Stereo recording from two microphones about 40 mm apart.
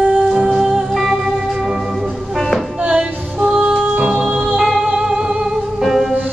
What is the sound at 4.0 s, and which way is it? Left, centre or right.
Music, right.